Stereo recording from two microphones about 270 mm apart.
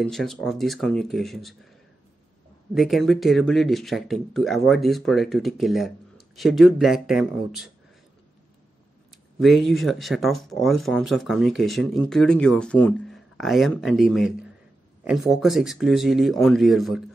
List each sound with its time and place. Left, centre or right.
0.0 s speech: centre
2.7 s speech: centre
9.4 s speech: centre